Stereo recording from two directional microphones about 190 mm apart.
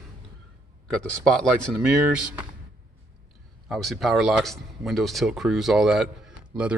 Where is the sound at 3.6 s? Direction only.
Centre (ahead or behind).